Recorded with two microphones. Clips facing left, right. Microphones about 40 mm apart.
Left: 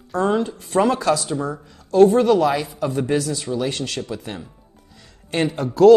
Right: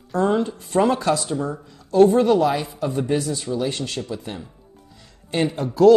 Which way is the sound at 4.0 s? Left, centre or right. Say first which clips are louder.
Left 1 dB; left.